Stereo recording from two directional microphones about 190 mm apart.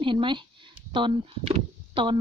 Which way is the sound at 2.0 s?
25° right (ahead or behind).